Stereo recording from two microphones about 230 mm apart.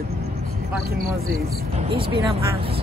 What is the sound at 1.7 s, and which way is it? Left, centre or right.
Speech, right.